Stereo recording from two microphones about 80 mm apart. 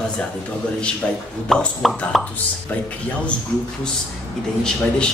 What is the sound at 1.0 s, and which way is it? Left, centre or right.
Speech, centre.